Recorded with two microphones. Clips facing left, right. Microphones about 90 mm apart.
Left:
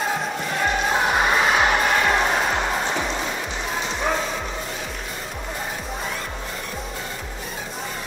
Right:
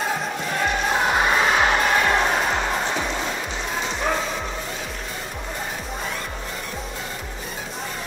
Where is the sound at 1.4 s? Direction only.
15° left (ahead or behind).